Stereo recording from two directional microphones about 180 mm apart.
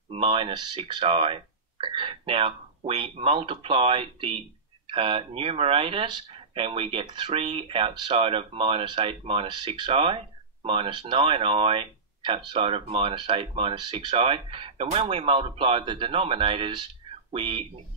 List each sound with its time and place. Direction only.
0.1 s speech: 30° right (ahead or behind)